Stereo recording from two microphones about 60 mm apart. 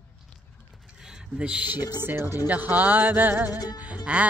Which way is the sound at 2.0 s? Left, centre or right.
Right.